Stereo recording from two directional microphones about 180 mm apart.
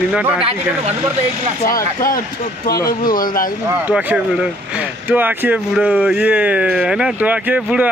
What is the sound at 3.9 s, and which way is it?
Speech, 10° right (ahead or behind).